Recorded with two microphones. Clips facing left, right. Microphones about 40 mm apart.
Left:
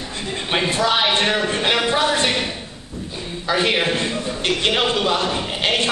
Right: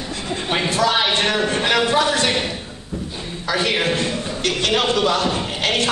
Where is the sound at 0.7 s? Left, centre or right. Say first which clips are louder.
Right 2 dB; left.